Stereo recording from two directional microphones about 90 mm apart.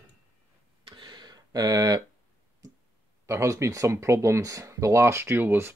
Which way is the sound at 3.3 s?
35° right (ahead or behind).